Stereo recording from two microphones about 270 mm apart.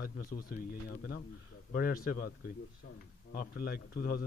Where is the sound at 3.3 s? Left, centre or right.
Left.